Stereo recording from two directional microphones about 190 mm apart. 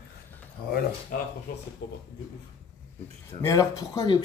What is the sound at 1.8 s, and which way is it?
Speech, 55° left (ahead or behind).